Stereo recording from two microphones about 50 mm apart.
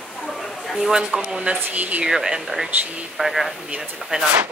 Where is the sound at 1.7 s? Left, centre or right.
Right.